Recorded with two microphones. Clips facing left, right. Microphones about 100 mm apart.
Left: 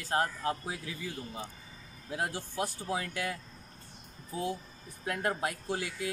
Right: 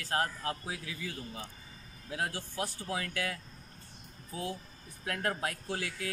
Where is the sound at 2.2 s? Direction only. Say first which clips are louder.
Left 2 dB; 20° left (ahead or behind).